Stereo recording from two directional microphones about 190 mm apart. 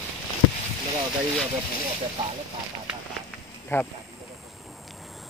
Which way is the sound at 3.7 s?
10° left (ahead or behind).